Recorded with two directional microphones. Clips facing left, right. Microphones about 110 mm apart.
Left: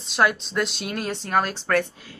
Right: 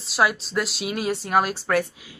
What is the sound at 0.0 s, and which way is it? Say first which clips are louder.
Speech: even; 5° right (ahead or behind).